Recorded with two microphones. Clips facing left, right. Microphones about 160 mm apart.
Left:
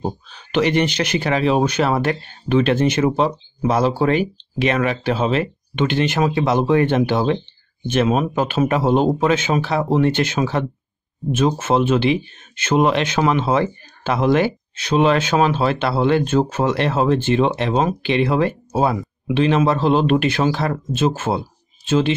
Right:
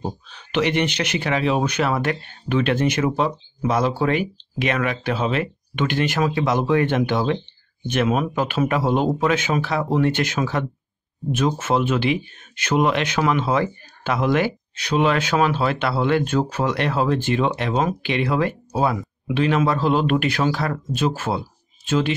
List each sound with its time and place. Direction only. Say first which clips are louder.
0.0 s speech: left 4 dB; 35° left (ahead or behind)